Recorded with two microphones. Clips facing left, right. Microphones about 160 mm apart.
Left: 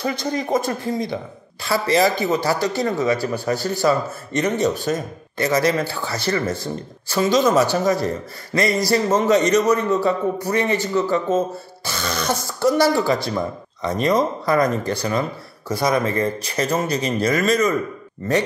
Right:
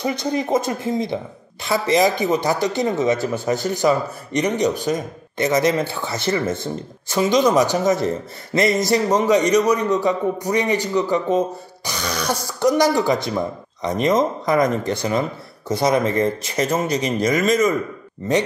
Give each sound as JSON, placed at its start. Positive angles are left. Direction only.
{"t": 0.0, "sound": "a man's voice", "side_deg": -20}